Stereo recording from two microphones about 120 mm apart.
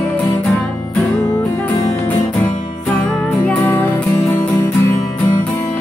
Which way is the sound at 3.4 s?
15° left (ahead or behind).